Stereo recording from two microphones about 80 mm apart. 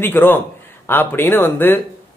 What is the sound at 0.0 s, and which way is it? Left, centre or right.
Speech, left.